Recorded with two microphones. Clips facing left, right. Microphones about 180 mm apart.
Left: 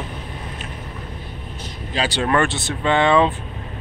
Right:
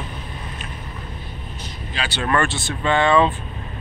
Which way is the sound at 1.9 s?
35° left (ahead or behind).